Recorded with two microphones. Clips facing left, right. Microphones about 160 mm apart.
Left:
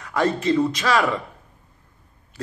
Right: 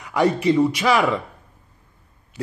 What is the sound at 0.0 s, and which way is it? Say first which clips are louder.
A man's voice: right 3 dB; 15° right (ahead or behind).